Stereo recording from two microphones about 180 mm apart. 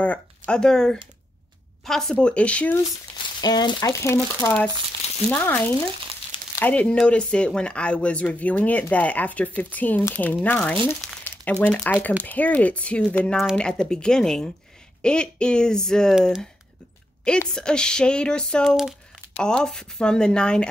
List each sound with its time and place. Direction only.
0.0 s speech: 5° left (ahead or behind)
3.3 s speech: 20° left (ahead or behind); by 20.6 s 5° left (ahead or behind)